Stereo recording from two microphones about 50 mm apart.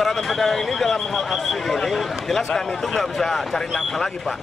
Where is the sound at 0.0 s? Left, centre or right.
Centre.